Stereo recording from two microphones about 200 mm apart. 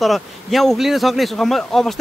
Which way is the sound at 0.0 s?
Centre (ahead or behind).